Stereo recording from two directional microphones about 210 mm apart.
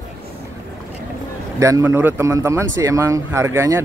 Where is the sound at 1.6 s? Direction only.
15° right (ahead or behind).